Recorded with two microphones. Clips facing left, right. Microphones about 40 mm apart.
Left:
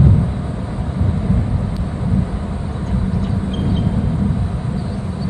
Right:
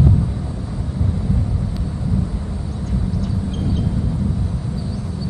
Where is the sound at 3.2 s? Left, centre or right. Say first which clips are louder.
Left 3 dB; left.